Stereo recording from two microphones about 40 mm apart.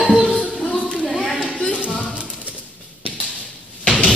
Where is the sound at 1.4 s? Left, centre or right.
Left.